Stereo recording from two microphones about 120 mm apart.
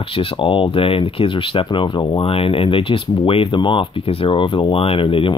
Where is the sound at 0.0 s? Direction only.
45° left (ahead or behind).